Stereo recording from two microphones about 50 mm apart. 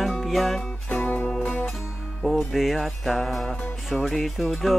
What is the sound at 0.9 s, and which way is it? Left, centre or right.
Music, left.